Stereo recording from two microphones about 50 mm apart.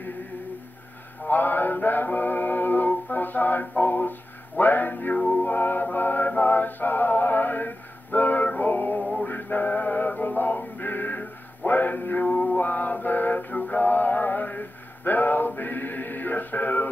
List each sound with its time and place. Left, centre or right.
1.2 s a sound: left
4.6 s mantra: left
5.1 s music: left